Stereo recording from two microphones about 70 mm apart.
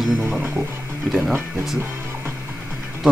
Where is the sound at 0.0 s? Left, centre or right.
Centre.